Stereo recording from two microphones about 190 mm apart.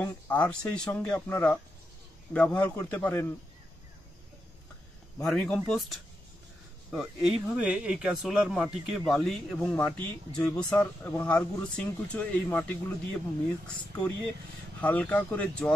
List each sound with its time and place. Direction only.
0.0 s speech: 5° left (ahead or behind)
5.2 s speech: 5° left (ahead or behind)